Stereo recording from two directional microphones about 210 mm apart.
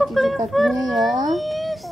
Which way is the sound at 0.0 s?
Centre (ahead or behind).